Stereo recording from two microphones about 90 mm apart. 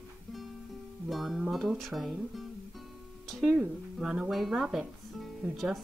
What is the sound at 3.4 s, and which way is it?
Speech, 20° right (ahead or behind).